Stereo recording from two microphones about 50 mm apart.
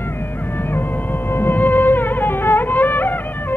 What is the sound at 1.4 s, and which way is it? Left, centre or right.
Music, left.